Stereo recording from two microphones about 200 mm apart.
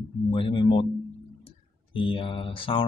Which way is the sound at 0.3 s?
25° left (ahead or behind).